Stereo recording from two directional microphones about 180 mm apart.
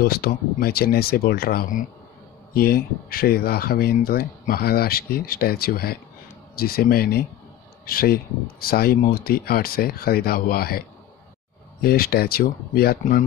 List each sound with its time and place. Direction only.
0.0 s speech: 55° left (ahead or behind)
11.8 s speech: 55° left (ahead or behind)